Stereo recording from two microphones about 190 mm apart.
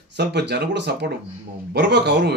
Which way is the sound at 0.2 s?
65° right (ahead or behind).